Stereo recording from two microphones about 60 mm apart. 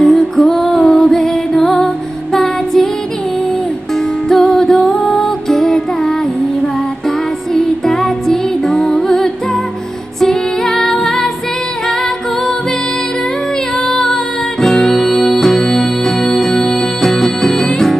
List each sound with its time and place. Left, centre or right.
0.0 s music: centre
3.9 s music: centre
13.7 s music: centre